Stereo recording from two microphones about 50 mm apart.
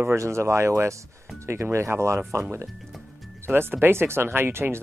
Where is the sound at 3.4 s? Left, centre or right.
Right.